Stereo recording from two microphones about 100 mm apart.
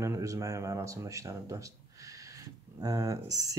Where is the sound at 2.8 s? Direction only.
35° right (ahead or behind).